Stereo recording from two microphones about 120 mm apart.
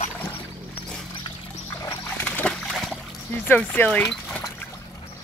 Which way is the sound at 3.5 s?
15° left (ahead or behind).